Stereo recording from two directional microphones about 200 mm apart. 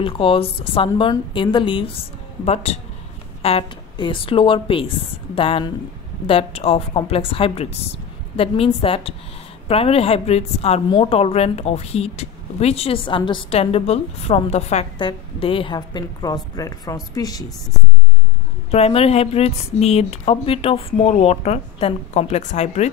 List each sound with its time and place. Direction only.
0.0 s speech: 25° left (ahead or behind)
18.7 s speech: 30° left (ahead or behind)